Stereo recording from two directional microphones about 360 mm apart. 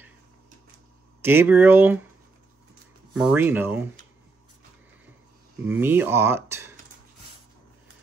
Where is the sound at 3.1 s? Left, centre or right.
Centre.